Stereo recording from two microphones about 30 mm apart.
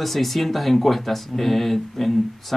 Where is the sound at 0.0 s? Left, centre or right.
Centre.